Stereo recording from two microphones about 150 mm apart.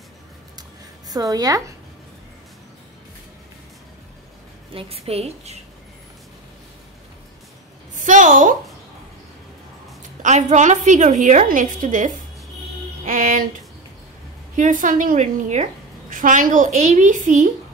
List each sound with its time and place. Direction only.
0.6 s a sound: 25° right (ahead or behind)
4.7 s a woman's voice: 40° right (ahead or behind)
8.0 s a woman's voice: 60° right (ahead or behind)
10.2 s a woman's voice: 55° right (ahead or behind)
13.0 s music: 60° right (ahead or behind)
14.5 s a woman's voice: 60° right (ahead or behind)